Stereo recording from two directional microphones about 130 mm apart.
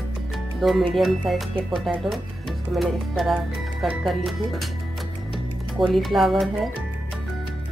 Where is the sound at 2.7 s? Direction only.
Centre (ahead or behind).